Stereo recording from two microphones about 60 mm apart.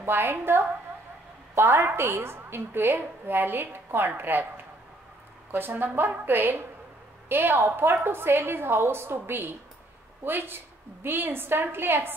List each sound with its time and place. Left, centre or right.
0.0 s a woman's voice: right
5.5 s a woman's voice: right